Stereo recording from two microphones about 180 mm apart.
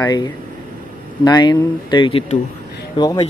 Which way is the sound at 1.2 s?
25° left (ahead or behind).